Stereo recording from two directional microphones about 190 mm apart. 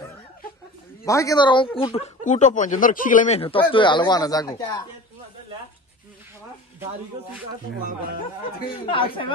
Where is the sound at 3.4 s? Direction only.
30° left (ahead or behind).